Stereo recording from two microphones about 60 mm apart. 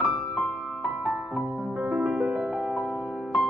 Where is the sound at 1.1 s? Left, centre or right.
Right.